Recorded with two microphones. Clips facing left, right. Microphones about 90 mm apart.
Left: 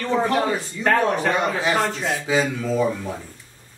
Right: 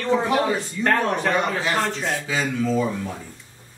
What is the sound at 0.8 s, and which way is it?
Speech, 5° left (ahead or behind).